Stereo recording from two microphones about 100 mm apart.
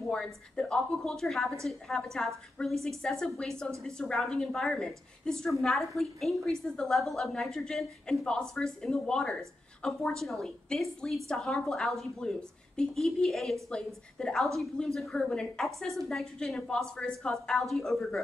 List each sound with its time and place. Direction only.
0.1 s a woman's voice: 10° left (ahead or behind)